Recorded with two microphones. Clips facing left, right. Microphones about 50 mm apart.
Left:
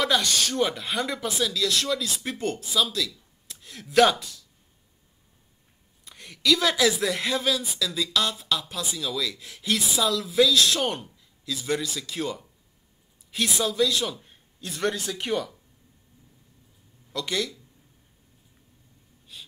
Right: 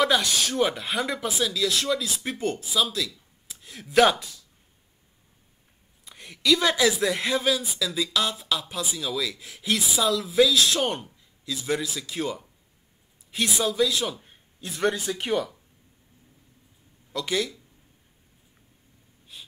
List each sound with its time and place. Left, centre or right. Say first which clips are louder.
0.0 s speech: right 1 dB; centre
6.0 s speech: right 1 dB; centre
17.1 s speech: right 2 dB; centre
19.3 s gasp: even; centre